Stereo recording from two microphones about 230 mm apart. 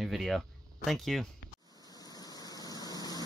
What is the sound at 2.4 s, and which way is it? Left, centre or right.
Vehicle, centre.